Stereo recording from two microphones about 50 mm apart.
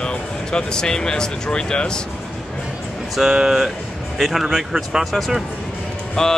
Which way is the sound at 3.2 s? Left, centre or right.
Centre.